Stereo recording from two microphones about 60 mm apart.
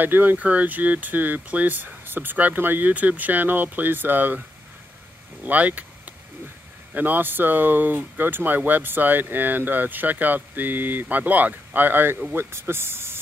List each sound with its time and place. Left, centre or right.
0.0 s speech: right
5.4 s speech: right
6.9 s speech: right